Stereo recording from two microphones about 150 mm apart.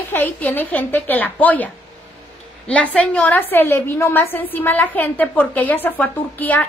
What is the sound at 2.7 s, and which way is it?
A woman's voice, 10° left (ahead or behind).